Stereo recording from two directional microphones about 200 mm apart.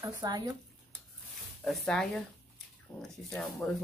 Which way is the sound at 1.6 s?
5° left (ahead or behind).